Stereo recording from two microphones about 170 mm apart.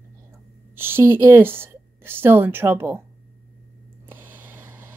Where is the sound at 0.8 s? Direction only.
15° right (ahead or behind).